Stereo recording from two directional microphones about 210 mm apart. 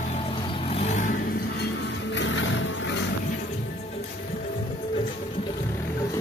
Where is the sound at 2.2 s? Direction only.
65° left (ahead or behind).